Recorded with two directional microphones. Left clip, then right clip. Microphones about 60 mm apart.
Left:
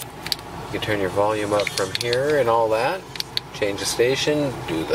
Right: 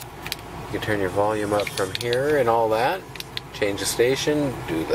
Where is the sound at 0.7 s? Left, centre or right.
Centre.